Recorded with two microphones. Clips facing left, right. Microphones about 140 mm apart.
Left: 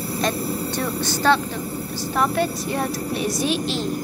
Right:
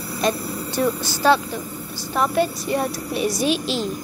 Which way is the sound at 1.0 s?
5° right (ahead or behind).